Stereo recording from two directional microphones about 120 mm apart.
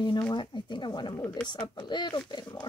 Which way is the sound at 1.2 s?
15° left (ahead or behind).